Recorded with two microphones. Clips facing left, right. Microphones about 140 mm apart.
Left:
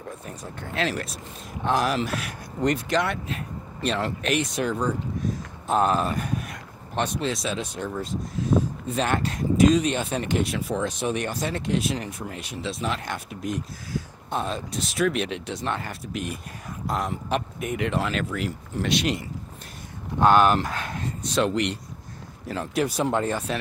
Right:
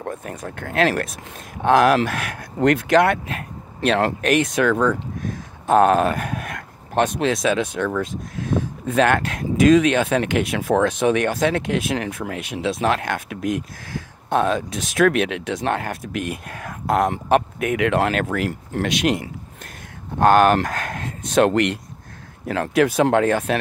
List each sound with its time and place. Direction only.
0.0 s speech: 65° right (ahead or behind)
5.7 s speech: 60° right (ahead or behind); by 13.7 s 90° right
14.3 s speech: 65° right (ahead or behind)
20.7 s speech: 50° right (ahead or behind)
21.0 s speech: 65° right (ahead or behind)
22.5 s speech: 80° right